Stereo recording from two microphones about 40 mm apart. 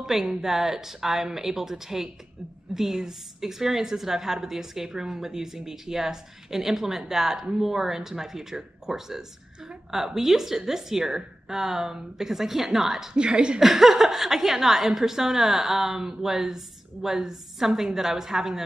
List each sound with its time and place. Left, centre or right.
0.0 s speech: centre
13.1 s speech: right
13.6 s speech: centre